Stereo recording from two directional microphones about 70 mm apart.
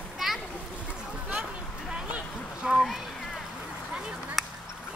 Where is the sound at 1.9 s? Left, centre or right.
Centre.